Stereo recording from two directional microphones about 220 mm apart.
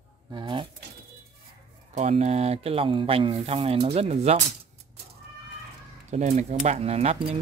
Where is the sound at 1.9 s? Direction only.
30° right (ahead or behind).